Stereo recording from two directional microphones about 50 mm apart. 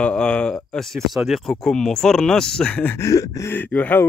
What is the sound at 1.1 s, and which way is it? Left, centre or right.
Speech, centre.